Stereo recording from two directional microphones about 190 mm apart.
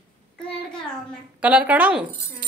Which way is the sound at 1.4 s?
5° right (ahead or behind).